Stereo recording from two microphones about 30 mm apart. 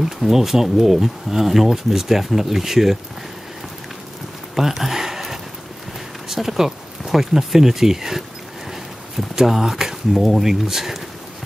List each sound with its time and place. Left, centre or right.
0.0 s speech: centre
4.6 s a sound: centre
6.2 s speech: centre